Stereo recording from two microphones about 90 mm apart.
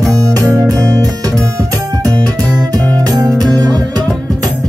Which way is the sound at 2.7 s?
45° right (ahead or behind).